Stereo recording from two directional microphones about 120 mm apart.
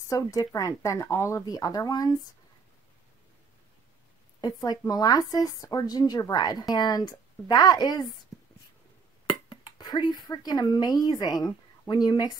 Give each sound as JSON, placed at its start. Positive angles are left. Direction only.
{"t": 0.1, "sound": "speech", "side_deg": 30}
{"t": 4.4, "sound": "speech", "side_deg": 35}
{"t": 8.3, "sound": "writing", "side_deg": 0}
{"t": 9.3, "sound": "speech", "side_deg": 40}